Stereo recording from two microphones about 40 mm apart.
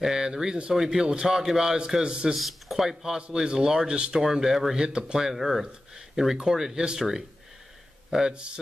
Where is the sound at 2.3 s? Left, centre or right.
Centre.